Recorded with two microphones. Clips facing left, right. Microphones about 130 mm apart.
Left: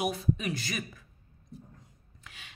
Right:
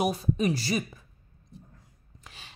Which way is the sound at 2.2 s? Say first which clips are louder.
Right 2 dB; 35° right (ahead or behind).